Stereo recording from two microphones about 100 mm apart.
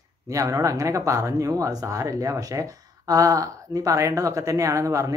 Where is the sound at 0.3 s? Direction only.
35° right (ahead or behind).